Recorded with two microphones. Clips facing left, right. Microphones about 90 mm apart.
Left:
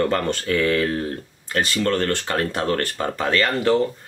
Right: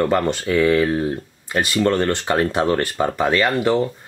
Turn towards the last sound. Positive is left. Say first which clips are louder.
# right 1 dB
turn(degrees=-15)  # may be behind; listen again after turning